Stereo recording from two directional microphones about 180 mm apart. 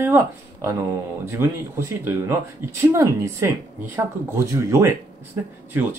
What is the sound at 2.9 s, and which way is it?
Speech, 15° right (ahead or behind).